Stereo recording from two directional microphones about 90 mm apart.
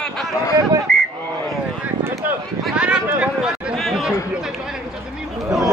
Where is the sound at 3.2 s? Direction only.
10° right (ahead or behind).